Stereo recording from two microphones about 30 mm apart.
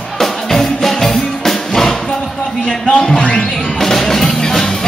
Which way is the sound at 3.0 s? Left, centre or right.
Left.